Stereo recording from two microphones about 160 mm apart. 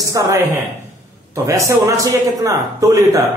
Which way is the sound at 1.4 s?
20° right (ahead or behind).